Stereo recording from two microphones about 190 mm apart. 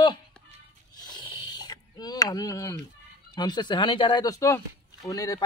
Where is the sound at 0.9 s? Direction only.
20° left (ahead or behind).